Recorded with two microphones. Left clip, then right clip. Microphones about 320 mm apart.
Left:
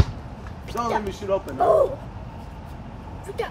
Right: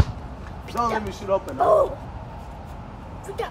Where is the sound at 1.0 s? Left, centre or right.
Centre.